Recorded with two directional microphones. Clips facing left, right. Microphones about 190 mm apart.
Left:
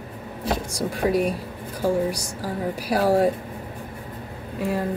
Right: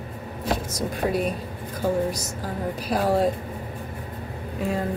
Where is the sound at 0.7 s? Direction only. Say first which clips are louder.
Left 6 dB; 10° left (ahead or behind).